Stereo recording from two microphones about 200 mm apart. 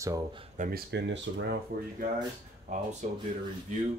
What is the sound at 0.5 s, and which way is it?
Speech, 40° right (ahead or behind).